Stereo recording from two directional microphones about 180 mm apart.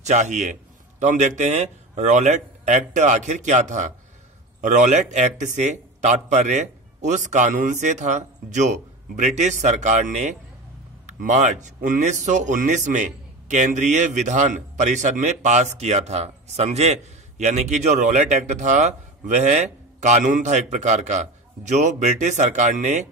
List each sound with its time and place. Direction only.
0.0 s a man's voice: 40° right (ahead or behind)